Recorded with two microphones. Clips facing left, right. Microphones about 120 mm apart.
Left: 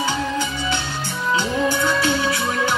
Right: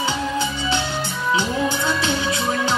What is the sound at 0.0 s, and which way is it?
Music, 20° right (ahead or behind).